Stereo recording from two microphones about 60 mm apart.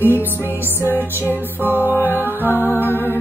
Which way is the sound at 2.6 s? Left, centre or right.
Left.